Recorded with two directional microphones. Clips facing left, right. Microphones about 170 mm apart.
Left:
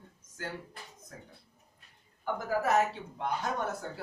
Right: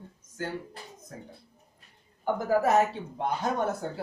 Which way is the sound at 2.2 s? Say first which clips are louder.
Right 6 dB; 30° right (ahead or behind).